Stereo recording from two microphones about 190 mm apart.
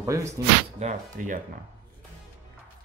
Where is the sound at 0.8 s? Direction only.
40° right (ahead or behind).